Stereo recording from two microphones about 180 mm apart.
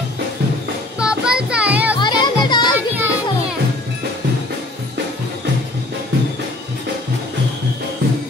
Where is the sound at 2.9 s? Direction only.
10° right (ahead or behind).